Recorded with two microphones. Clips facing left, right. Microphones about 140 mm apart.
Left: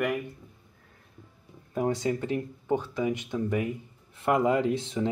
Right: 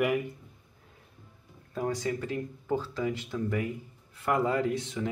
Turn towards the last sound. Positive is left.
turn(degrees=25)  # may be behind; listen again after turning